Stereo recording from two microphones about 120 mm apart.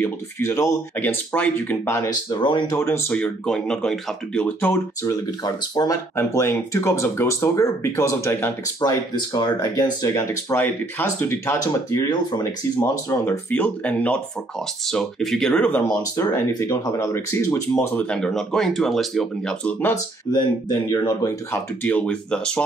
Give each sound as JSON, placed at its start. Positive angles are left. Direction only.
{"t": 0.0, "sound": "speech", "side_deg": 25}
{"t": 0.9, "sound": "speech", "side_deg": 15}
{"t": 2.0, "sound": "speech", "side_deg": 35}
{"t": 2.7, "sound": "speech", "side_deg": 25}
{"t": 3.2, "sound": "speech", "side_deg": 5}
{"t": 5.0, "sound": "speech", "side_deg": 30}
{"t": 8.8, "sound": "speech", "side_deg": 40}
{"t": 13.5, "sound": "speech", "side_deg": 15}
{"t": 15.9, "sound": "speech", "side_deg": 30}
{"t": 18.1, "sound": "speech", "side_deg": 5}
{"t": 20.3, "sound": "speech", "side_deg": 35}
{"t": 21.8, "sound": "speech", "side_deg": 10}